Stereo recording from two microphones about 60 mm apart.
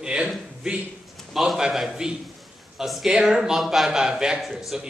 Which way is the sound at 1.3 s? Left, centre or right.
Centre.